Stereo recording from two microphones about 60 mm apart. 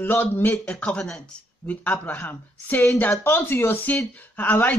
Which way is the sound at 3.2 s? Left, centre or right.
Left.